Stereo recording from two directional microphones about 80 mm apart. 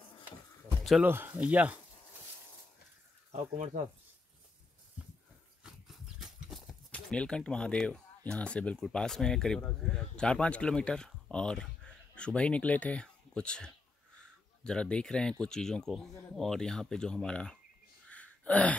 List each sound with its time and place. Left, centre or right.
1.0 s speech: right
5.6 s horse: centre
6.9 s speech: centre
18.1 s gasp: centre